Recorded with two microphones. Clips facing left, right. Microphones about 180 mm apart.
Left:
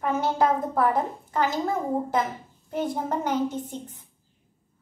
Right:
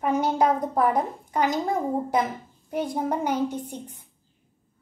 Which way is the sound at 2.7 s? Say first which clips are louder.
Right 1 dB; 10° right (ahead or behind).